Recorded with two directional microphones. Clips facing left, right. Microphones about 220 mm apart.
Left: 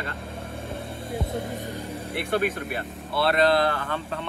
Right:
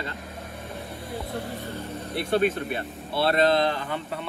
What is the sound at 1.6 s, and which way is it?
Vehicle, 15° left (ahead or behind).